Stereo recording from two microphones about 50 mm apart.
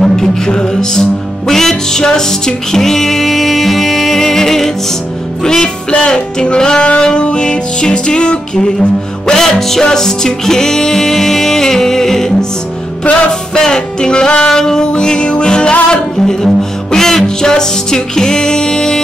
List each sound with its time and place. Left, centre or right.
0.0 s music: centre